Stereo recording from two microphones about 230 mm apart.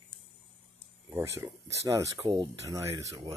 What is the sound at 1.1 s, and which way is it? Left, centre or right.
Speech, centre.